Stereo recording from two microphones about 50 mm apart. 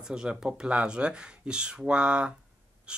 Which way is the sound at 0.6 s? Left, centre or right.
Right.